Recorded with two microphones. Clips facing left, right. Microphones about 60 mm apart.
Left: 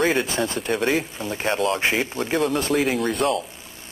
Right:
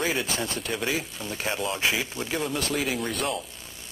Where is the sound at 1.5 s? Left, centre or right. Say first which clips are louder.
Left 7 dB; left.